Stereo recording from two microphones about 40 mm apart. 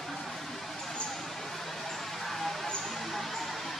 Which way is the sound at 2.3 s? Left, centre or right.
Centre.